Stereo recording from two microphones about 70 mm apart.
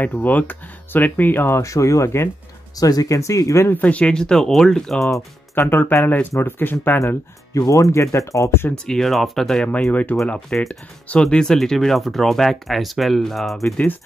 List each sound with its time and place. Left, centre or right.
0.0 s speech: left
1.6 s speech: left
2.7 s speech: left
3.2 s speech: left
3.6 s speech: left; by 5.0 s centre
5.0 s speech: left
5.7 s speech: left
7.5 s speech: left
8.8 s speech: centre
9.7 s speech: centre
11.2 s speech: centre